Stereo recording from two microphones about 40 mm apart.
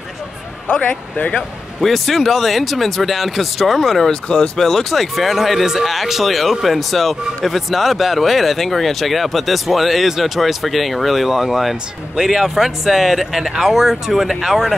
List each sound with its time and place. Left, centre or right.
0.7 s speech: left
1.8 s speech: centre
4.1 s speech: left
4.6 s speech: centre